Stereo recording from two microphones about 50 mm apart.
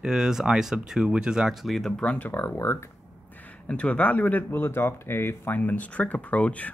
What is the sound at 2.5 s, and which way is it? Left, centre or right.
Speech, left.